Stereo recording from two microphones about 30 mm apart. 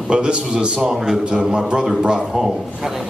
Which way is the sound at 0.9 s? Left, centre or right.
Centre.